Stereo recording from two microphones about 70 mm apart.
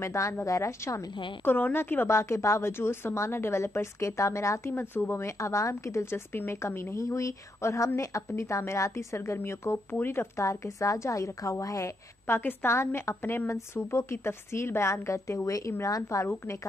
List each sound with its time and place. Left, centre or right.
0.0 s speech: left
1.4 s a woman's voice: left
7.0 s speech: left
10.4 s speech: left
12.3 s a woman's voice: left